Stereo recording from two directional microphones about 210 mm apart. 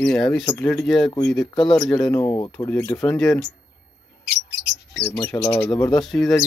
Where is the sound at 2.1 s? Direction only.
20° left (ahead or behind).